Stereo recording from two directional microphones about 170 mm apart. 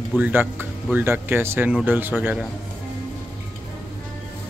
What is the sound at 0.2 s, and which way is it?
Speech, 10° right (ahead or behind).